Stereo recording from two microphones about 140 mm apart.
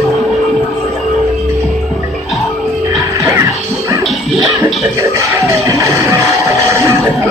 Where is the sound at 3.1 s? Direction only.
20° right (ahead or behind).